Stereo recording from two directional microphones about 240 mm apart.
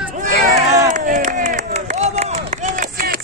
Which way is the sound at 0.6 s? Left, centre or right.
Centre.